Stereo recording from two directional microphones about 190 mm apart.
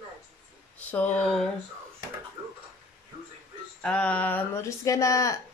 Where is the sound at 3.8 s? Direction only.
5° left (ahead or behind).